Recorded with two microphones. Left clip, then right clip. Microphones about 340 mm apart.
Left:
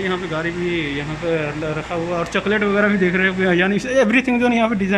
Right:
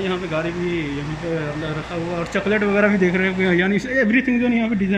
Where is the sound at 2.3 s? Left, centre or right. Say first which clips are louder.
Right 1 dB; centre.